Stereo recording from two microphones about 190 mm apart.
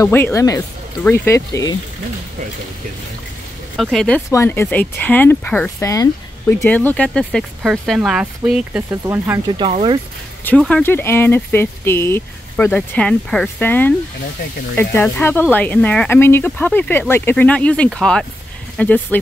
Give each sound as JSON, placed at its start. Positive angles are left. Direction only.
{"t": 0.0, "sound": "speech", "side_deg": 10}
{"t": 3.7, "sound": "speech", "side_deg": 0}
{"t": 4.3, "sound": "speech", "side_deg": 15}
{"t": 9.5, "sound": "speech", "side_deg": -30}
{"t": 10.4, "sound": "speech", "side_deg": 5}